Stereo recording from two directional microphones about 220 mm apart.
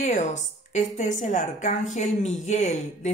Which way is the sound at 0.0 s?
35° left (ahead or behind).